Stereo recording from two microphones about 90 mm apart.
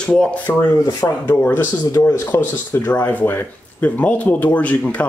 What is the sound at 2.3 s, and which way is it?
Speech, 25° left (ahead or behind).